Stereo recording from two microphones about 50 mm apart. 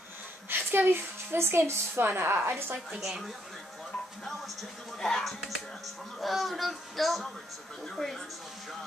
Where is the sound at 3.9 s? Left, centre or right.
Centre.